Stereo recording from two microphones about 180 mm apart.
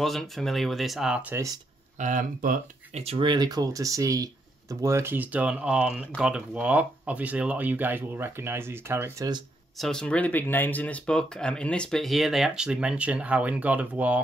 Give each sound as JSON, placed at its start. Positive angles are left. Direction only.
{"t": 0.0, "sound": "speech", "side_deg": 0}
{"t": 2.0, "sound": "speech", "side_deg": -45}
{"t": 3.0, "sound": "speech", "side_deg": -30}
{"t": 9.8, "sound": "speech", "side_deg": 5}